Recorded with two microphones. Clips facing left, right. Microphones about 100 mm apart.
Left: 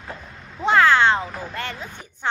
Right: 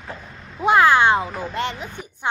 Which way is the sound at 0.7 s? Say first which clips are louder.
Right 1 dB; 15° right (ahead or behind).